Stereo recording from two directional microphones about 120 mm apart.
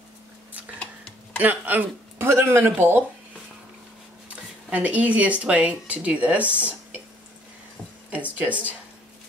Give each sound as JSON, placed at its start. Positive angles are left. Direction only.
{"t": 0.7, "sound": "tick", "side_deg": 10}
{"t": 1.4, "sound": "speech", "side_deg": -15}
{"t": 4.6, "sound": "speech", "side_deg": -10}
{"t": 8.4, "sound": "speech", "side_deg": -10}